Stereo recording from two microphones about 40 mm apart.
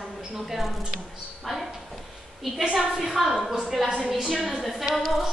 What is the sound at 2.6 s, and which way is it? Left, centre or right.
Speech, centre.